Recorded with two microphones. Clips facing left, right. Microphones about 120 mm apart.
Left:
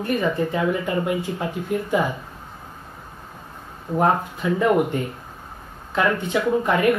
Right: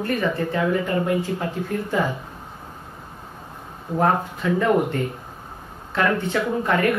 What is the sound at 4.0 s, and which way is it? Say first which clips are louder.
Speech: even; 15° left (ahead or behind).